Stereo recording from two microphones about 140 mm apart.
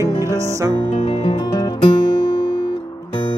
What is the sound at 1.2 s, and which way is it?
Music, 35° left (ahead or behind).